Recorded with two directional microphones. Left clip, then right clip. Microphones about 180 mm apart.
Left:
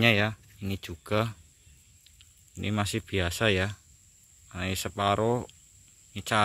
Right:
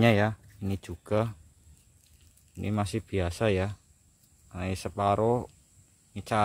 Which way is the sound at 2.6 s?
Centre (ahead or behind).